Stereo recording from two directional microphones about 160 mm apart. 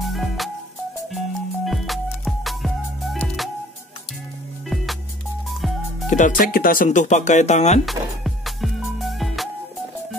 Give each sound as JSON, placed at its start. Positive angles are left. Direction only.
{"t": 0.0, "sound": "music", "side_deg": 0}
{"t": 6.0, "sound": "speech", "side_deg": 50}
{"t": 7.8, "sound": "music", "side_deg": 0}